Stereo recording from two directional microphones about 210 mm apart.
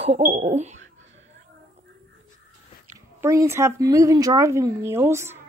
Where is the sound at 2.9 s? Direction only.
15° right (ahead or behind).